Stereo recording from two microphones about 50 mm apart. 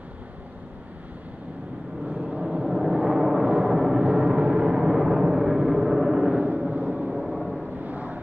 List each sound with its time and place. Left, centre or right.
2.0 s vehicle: right; by 4.1 s centre
4.1 s vehicle: right
4.8 s vehicle: centre
5.7 s gong: centre
6.3 s a sound: right
6.7 s vehicle: right
7.2 s vehicle: centre
7.8 s vehicle: right